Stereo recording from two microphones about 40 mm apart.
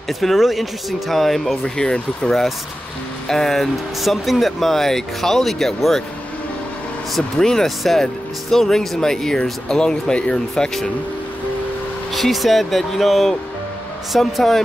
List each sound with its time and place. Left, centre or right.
0.2 s speech: centre
1.8 s speech: left
3.3 s speech: centre
4.0 s speech: centre
7.3 s speech: centre
7.6 s speech: centre
12.1 s speech: centre